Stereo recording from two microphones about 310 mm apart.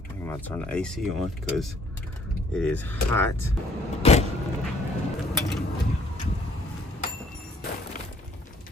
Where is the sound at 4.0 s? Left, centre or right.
Left.